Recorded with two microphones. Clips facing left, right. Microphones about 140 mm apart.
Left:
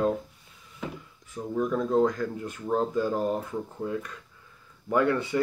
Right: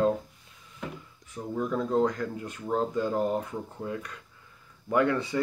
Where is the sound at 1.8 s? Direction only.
20° left (ahead or behind).